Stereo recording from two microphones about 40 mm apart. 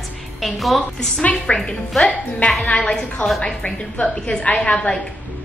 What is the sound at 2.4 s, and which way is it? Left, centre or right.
Speech, left.